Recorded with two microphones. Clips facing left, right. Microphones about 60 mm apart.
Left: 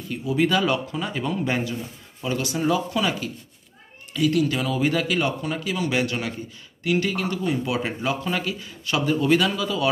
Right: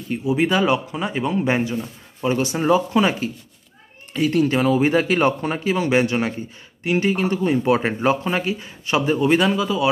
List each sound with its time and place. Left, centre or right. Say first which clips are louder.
0.1 s speech: right 2 dB; right